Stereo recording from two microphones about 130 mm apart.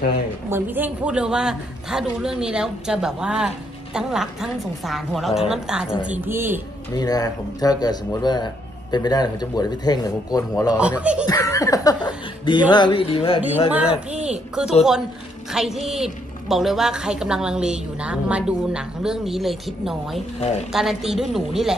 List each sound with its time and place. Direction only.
0.5 s a man's voice: 15° right (ahead or behind)
6.1 s a man's voice: 15° right (ahead or behind)
6.9 s speech: 30° left (ahead or behind)
10.8 s a man's voice: 10° right (ahead or behind)
11.2 s speech: 25° left (ahead or behind); by 13.4 s 45° left (ahead or behind)
14.1 s speech: 60° right (ahead or behind)
14.5 s a man's voice: 5° right (ahead or behind)
20.3 s speech: 55° left (ahead or behind)
20.7 s a man's voice: 5° right (ahead or behind)